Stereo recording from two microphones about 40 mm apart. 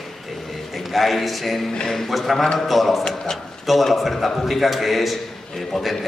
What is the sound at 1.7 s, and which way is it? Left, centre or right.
Speech, centre.